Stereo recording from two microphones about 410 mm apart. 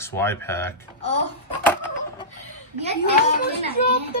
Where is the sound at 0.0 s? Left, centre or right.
Centre.